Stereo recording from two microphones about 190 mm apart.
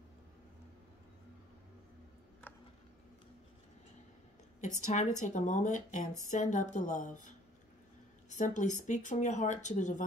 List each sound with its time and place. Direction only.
2.4 s a sound: 10° left (ahead or behind)
4.6 s a woman's voice: 40° left (ahead or behind)
8.3 s a woman's voice: 40° left (ahead or behind)